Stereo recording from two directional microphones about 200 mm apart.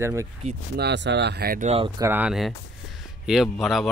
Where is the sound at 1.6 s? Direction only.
30° right (ahead or behind).